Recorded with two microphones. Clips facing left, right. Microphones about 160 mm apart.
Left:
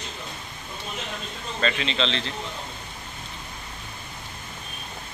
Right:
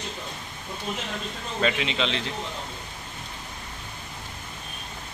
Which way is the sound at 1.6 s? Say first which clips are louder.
Even; 10° right (ahead or behind).